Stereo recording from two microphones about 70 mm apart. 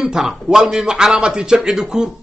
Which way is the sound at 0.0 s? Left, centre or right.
Centre.